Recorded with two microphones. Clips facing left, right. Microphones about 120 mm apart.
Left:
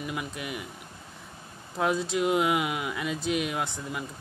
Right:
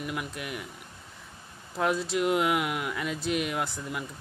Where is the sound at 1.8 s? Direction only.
Centre (ahead or behind).